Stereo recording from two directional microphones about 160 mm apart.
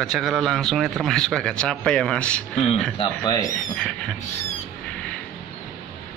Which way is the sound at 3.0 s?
25° left (ahead or behind).